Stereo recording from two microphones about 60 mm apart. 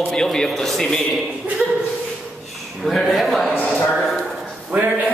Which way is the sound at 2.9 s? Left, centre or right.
Centre.